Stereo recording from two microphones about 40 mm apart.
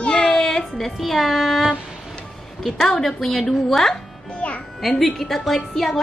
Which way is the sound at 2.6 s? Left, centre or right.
Centre.